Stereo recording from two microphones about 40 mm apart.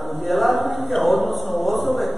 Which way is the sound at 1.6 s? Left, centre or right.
Centre.